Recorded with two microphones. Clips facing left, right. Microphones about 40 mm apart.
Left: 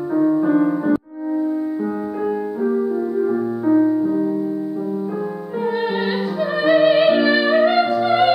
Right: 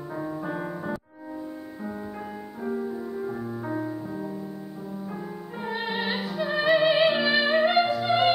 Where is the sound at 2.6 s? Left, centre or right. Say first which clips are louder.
Left 9 dB; left.